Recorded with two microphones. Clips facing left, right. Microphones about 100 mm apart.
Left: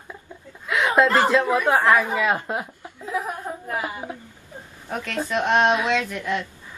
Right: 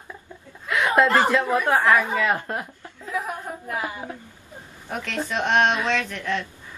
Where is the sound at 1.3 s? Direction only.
15° left (ahead or behind).